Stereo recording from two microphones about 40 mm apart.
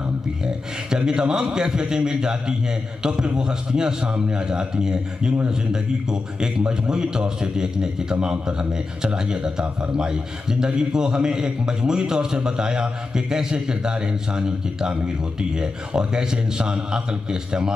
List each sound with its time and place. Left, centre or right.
0.8 s a man's voice: centre